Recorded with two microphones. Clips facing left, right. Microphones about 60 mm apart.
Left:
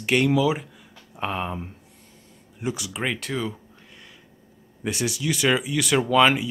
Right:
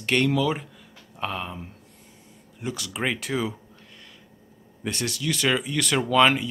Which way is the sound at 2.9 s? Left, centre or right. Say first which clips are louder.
Right 4 dB; centre.